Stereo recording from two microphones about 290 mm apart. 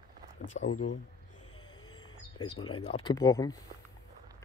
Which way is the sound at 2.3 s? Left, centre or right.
Centre.